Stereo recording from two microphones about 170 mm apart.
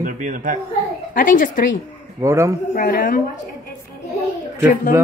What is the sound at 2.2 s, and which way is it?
Speech, 15° right (ahead or behind).